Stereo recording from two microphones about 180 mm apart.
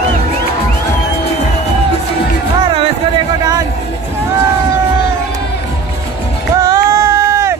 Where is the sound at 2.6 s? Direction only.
30° right (ahead or behind).